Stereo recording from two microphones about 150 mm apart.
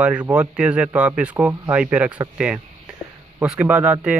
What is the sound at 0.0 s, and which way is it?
Speech, 10° right (ahead or behind).